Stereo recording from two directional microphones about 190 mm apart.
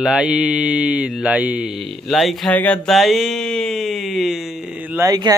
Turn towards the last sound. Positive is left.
turn(degrees=-20)  # may be behind; listen again after turning